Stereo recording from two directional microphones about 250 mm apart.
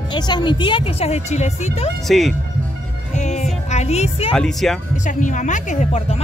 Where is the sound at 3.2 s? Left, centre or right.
Left.